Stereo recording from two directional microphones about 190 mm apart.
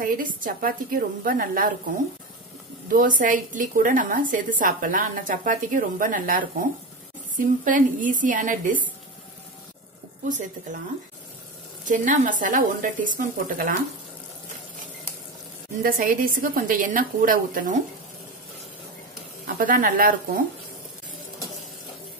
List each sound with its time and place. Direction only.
0.0 s a woman's voice: 45° right (ahead or behind)
2.9 s a woman's voice: 45° right (ahead or behind)
10.2 s speech: 40° right (ahead or behind)
11.9 s a woman's voice: 45° right (ahead or behind)
15.8 s a woman's voice: 50° right (ahead or behind)
19.4 s a woman's voice: 45° right (ahead or behind)